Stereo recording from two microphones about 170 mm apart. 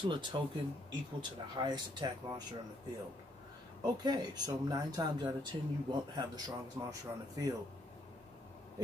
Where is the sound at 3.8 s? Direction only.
25° right (ahead or behind).